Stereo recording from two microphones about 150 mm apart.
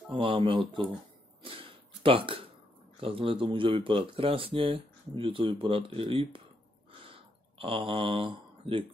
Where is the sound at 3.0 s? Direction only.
35° right (ahead or behind).